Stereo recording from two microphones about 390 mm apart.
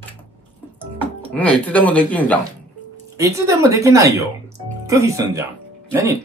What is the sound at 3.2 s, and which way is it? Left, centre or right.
Speech, centre.